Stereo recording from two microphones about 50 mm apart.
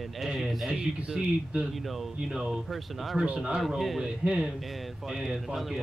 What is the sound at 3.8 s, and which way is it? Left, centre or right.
Speech, centre.